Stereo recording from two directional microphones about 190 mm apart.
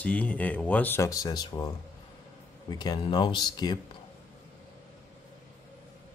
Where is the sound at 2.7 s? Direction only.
20° left (ahead or behind).